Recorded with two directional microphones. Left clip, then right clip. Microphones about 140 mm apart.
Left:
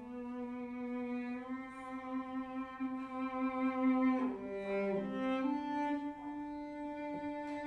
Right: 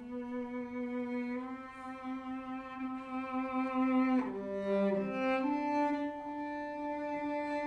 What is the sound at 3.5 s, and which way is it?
Music, 20° right (ahead or behind).